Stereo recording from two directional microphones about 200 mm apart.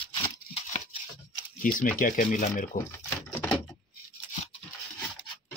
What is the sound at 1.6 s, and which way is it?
Speech, 45° left (ahead or behind).